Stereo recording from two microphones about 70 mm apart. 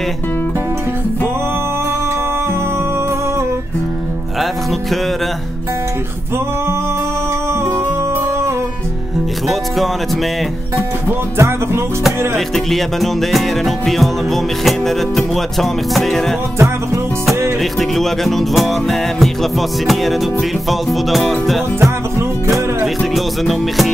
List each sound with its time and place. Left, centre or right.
11.3 s music: right
12.4 s music: centre
16.5 s music: right
17.7 s music: centre
23.1 s music: centre